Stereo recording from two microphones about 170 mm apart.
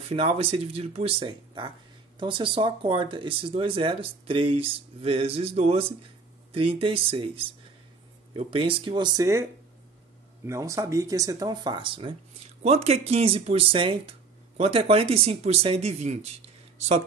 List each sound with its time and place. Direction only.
0.1 s speech: 35° right (ahead or behind)